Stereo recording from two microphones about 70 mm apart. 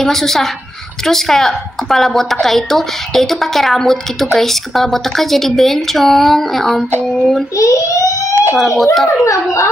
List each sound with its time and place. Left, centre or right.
0.0 s a woman's voice: centre
7.5 s a child's voice: left
8.5 s a woman's voice: centre
9.2 s a child's voice: left